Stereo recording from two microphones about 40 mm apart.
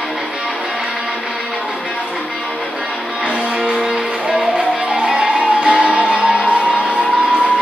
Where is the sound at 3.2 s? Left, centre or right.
Right.